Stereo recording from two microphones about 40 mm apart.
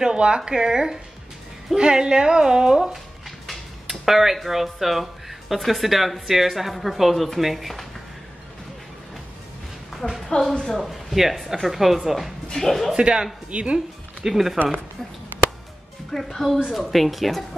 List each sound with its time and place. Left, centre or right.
0.0 s a woman's voice: right
2.9 s a sound: centre
4.0 s speech: centre
9.9 s a sound: centre
10.7 s speech: centre
12.9 s a woman's voice: right
14.2 s speech: centre
16.1 s a woman's voice: centre